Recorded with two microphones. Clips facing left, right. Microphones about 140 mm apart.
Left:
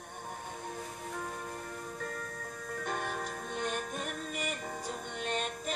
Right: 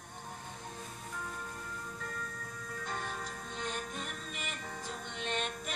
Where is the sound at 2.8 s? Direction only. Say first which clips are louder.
Left 4 dB; 60° left (ahead or behind).